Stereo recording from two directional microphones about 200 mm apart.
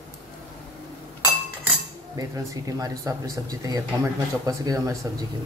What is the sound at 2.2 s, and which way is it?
Speech, 15° right (ahead or behind).